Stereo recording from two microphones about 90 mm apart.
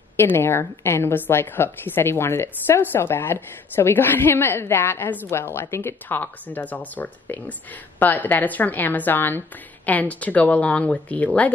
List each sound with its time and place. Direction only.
0.2 s a woman's voice: 25° left (ahead or behind)